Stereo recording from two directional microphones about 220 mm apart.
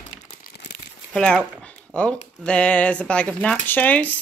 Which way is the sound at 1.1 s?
5° left (ahead or behind).